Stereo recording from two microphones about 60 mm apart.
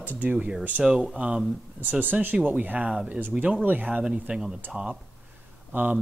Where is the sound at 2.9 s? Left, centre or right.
Centre.